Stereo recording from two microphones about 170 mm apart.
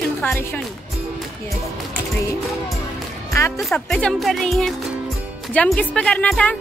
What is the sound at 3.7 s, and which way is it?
Speech, 5° left (ahead or behind).